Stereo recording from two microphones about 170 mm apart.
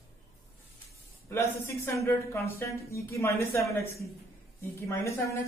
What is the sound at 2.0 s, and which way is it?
A woman's voice, 15° left (ahead or behind).